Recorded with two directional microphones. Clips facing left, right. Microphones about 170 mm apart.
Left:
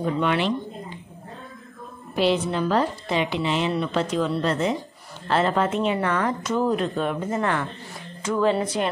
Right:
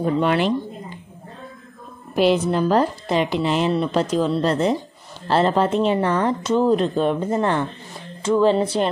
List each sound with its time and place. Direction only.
0.0 s speech: 40° right (ahead or behind)
2.4 s speech: 40° right (ahead or behind)